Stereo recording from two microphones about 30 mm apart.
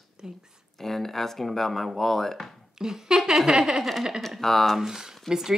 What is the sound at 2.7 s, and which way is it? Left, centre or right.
Speech, right.